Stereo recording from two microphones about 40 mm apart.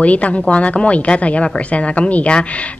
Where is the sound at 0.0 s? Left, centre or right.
Left.